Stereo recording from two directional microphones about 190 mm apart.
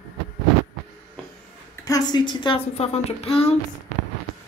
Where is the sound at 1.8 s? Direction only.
20° left (ahead or behind).